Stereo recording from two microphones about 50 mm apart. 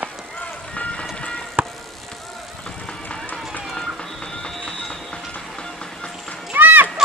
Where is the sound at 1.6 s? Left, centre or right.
Right.